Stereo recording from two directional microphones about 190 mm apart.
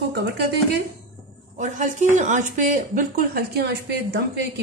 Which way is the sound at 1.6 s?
40° right (ahead or behind).